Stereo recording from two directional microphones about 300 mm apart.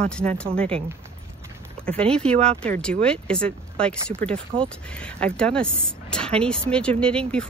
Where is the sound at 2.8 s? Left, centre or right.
Centre.